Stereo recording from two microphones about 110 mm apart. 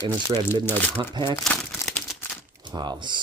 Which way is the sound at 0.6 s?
15° left (ahead or behind).